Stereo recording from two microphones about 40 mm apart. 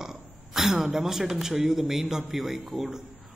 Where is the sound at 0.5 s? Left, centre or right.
Centre.